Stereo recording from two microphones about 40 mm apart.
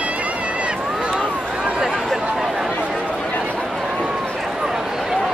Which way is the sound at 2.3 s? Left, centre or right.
Centre.